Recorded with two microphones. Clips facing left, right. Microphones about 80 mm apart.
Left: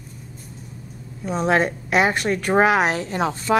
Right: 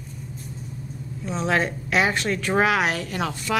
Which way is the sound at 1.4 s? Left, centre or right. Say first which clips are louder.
Left 4 dB; left.